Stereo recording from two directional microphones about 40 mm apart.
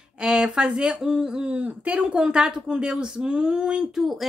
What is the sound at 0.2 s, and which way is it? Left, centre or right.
Speech, right.